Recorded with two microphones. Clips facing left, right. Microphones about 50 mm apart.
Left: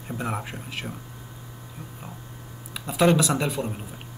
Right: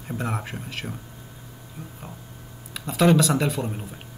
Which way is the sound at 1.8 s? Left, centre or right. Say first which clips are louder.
Right 3 dB; left.